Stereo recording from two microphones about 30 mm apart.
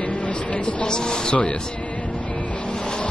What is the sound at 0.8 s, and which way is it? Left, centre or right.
Speech, left.